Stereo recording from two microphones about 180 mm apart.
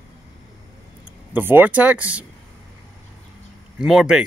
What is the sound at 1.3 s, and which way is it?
Speech, 10° right (ahead or behind).